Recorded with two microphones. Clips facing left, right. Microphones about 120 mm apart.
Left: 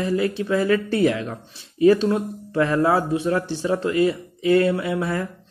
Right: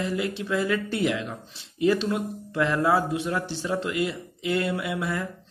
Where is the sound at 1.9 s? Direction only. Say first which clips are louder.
Left 7 dB; 40° left (ahead or behind).